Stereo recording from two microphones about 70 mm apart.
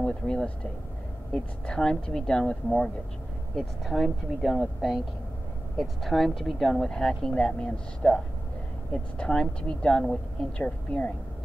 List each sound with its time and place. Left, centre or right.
0.0 s speech: centre
3.5 s speech: centre